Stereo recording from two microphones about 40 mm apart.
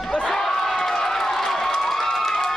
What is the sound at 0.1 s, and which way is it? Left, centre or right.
Crowd, centre.